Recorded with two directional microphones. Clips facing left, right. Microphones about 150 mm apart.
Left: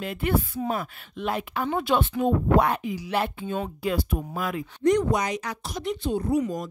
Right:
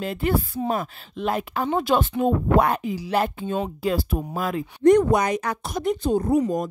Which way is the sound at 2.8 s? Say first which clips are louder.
Right 3 dB; 35° right (ahead or behind).